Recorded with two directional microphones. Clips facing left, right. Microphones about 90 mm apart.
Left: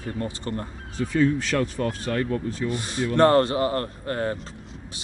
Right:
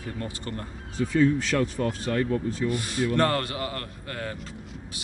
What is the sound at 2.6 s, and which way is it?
Speech, 25° left (ahead or behind).